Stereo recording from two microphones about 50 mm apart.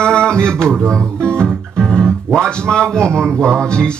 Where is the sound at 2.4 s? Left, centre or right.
Centre.